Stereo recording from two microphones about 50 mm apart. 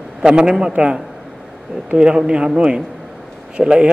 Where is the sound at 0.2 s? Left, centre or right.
Centre.